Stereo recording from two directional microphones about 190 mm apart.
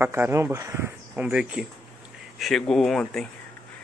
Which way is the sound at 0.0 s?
10° right (ahead or behind).